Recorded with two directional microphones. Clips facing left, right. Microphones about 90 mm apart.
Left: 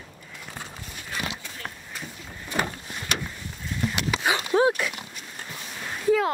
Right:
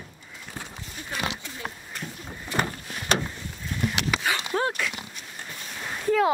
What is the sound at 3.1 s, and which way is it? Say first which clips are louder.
Vehicle: right 5 dB; 35° right (ahead or behind).